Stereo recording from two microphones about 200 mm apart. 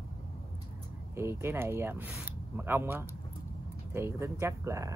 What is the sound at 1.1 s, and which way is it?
Speech, 15° right (ahead or behind).